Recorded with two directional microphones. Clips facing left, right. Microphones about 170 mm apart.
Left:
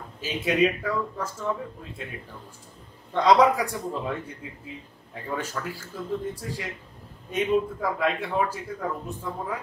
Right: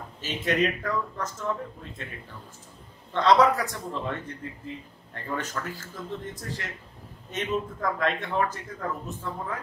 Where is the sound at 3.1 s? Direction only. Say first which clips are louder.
Left 1 dB; 10° left (ahead or behind).